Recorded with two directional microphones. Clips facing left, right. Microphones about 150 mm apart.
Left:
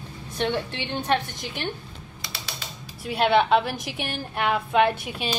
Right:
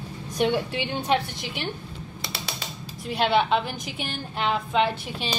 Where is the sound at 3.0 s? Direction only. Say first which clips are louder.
Left 2 dB; centre (ahead or behind).